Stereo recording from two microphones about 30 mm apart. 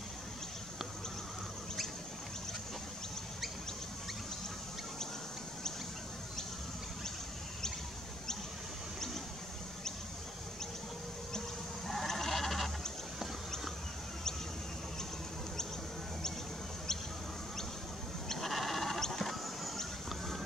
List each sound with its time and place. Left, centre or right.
11.9 s goat: centre
18.5 s goat: centre
18.9 s rodents: centre